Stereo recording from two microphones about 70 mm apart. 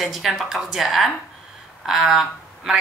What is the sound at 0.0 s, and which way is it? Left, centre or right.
A woman's voice, centre.